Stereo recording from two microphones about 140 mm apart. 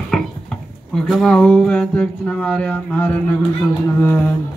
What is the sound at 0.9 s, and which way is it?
Speech, centre (ahead or behind).